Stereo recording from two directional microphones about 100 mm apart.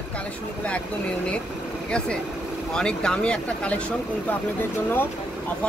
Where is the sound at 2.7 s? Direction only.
5° left (ahead or behind).